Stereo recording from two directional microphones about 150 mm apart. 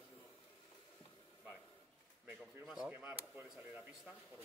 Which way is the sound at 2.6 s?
5° right (ahead or behind).